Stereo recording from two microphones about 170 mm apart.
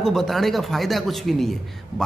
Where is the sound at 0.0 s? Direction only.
Centre (ahead or behind).